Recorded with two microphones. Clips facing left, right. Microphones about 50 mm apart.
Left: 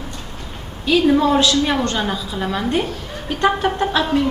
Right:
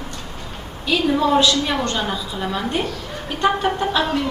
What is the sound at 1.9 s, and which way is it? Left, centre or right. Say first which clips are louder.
A woman's voice: left 2 dB; centre.